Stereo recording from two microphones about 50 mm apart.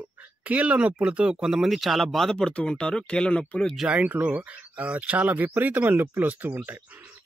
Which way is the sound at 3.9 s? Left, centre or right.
Right.